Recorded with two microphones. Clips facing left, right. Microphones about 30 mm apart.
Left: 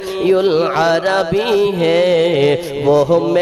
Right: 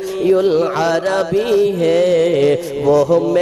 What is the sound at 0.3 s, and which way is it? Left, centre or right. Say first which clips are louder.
Mantra: even; left.